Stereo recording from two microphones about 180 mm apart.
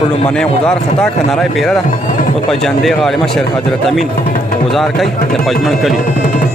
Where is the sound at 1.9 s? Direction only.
45° left (ahead or behind).